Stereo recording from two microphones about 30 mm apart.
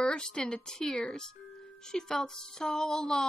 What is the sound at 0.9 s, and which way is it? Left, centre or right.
Speech, left.